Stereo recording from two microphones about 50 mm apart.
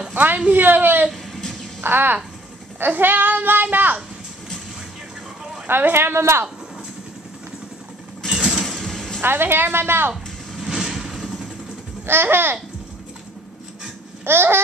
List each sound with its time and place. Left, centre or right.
0.1 s a sound: right
0.6 s speech: right
1.1 s a sound: centre
1.8 s speech: right
2.9 s child singing: right
3.6 s a sound: right
5.7 s a woman's voice: right
8.4 s a sound: centre
8.6 s vehicle: centre
9.2 s a woman's voice: right
10.7 s vehicle: centre
12.1 s a woman's voice: right
14.2 s a woman's voice: right